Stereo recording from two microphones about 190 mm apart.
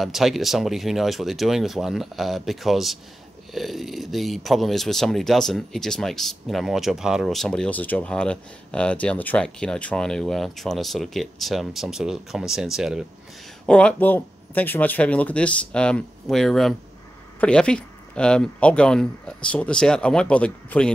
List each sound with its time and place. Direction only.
0.0 s speech: centre (ahead or behind)